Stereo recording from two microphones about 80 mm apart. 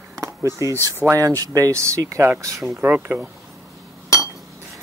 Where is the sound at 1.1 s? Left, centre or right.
Right.